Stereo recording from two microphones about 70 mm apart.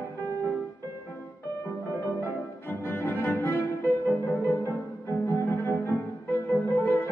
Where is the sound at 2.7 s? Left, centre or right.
Left.